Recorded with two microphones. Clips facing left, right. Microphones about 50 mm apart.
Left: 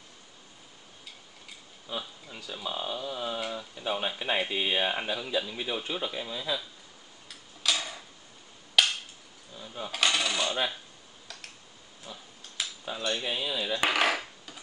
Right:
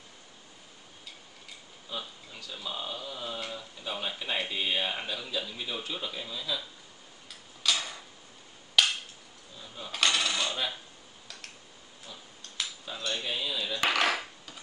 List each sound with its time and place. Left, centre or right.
1.9 s speech: centre
7.2 s tick-tock: centre
8.8 s a sound: centre
9.8 s coin: centre
12.1 s a sound: left
12.9 s cutlery: centre